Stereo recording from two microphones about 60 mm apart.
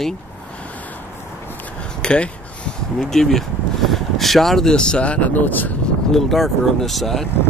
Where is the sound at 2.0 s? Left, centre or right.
Centre.